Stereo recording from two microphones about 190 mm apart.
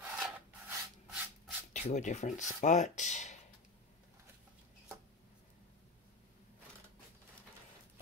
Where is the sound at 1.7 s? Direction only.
40° left (ahead or behind).